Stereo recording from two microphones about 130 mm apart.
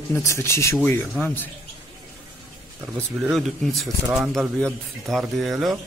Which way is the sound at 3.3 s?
Centre (ahead or behind).